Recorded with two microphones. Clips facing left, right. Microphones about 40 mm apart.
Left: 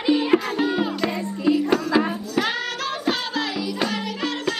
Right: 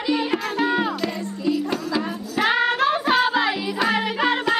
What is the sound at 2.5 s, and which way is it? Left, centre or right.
Music, right.